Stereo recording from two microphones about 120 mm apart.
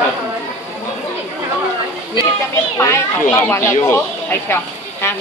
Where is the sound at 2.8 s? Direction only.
25° left (ahead or behind).